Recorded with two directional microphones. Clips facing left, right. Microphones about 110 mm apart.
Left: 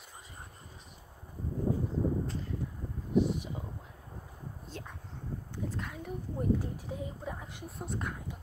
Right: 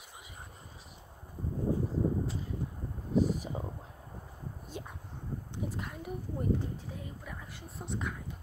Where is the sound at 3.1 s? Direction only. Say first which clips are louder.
Even; 40° right (ahead or behind).